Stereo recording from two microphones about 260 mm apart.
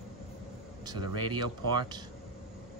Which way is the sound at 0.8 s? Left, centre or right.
Centre.